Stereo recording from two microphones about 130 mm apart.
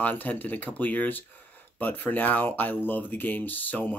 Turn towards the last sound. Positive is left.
turn(degrees=15)  # may be behind; listen again after turning